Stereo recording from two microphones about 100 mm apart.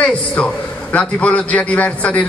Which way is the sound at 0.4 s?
10° left (ahead or behind).